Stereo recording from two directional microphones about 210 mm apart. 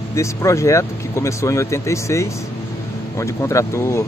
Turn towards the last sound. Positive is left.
turn(degrees=15)  # may be behind; listen again after turning